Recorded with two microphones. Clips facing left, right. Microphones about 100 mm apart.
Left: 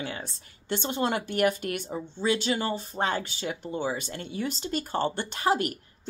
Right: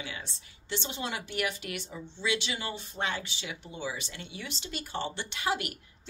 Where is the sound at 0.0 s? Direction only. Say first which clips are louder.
Left 6 dB; 45° left (ahead or behind).